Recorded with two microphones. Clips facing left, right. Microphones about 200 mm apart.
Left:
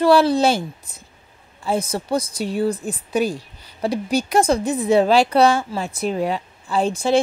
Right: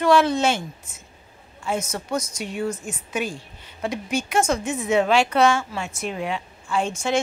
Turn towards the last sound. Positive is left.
turn(degrees=35)  # may be behind; listen again after turning